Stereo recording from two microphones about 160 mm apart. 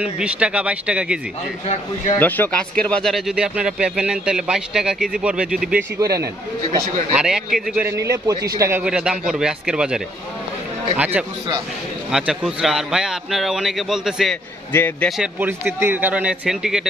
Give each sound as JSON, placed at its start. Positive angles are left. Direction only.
{"t": 0.0, "sound": "a man's voice", "side_deg": -5}
{"t": 2.1, "sound": "speech", "side_deg": 10}
{"t": 5.9, "sound": "a man's voice", "side_deg": -20}
{"t": 7.2, "sound": "a man's voice", "side_deg": -5}
{"t": 8.8, "sound": "a man's voice", "side_deg": -5}
{"t": 14.7, "sound": "a man's voice", "side_deg": 15}
{"t": 15.3, "sound": "a man's voice", "side_deg": -10}